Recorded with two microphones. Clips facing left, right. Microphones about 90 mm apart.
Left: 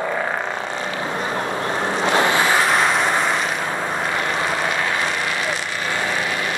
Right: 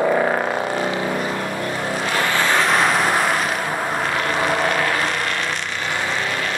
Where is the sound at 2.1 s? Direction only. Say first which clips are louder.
Left 3 dB; 20° left (ahead or behind).